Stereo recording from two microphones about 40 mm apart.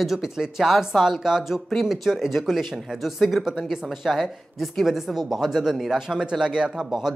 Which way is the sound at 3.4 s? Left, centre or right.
Centre.